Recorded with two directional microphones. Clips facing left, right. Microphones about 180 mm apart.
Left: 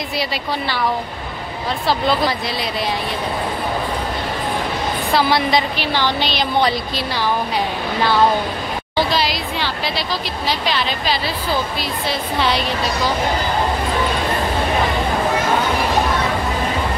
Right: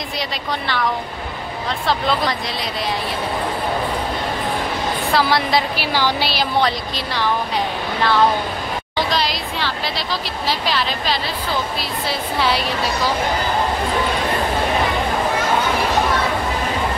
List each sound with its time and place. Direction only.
1.9 s speech: 5° left (ahead or behind)
5.1 s speech: centre (ahead or behind)
8.9 s speech: 5° left (ahead or behind)